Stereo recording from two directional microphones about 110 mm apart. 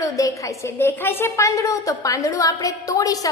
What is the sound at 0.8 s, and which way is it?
A woman's voice, 20° left (ahead or behind).